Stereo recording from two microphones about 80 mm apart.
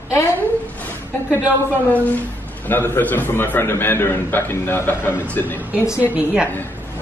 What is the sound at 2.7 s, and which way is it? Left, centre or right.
A man's voice, left.